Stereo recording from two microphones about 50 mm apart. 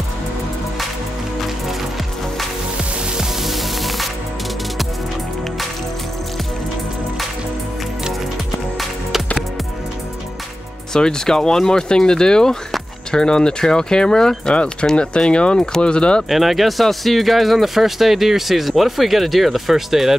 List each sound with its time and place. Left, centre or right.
3.2 s music: centre
10.9 s speech: centre
16.3 s speech: centre